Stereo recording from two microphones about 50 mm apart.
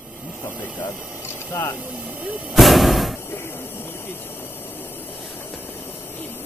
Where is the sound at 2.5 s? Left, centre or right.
Centre.